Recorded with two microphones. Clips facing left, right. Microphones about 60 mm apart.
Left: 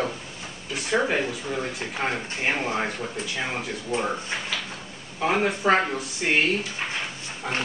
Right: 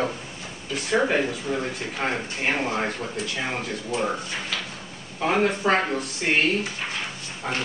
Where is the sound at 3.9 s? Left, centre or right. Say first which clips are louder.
Even; left.